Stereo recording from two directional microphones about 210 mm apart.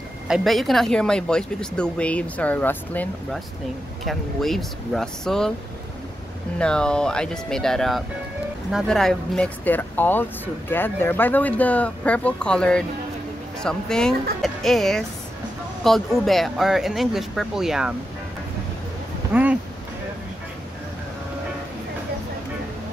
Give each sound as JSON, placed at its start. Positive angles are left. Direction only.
{"t": 0.3, "sound": "speech", "side_deg": 0}
{"t": 6.6, "sound": "speech", "side_deg": 5}
{"t": 19.3, "sound": "speech", "side_deg": -5}